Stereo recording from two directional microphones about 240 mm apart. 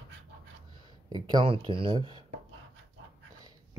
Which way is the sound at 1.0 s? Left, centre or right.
Centre.